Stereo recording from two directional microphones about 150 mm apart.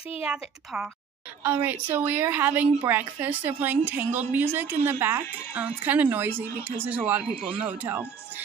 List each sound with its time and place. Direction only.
0.2 s speech: 5° right (ahead or behind)